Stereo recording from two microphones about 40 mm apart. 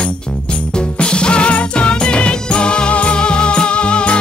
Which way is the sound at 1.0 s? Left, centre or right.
Left.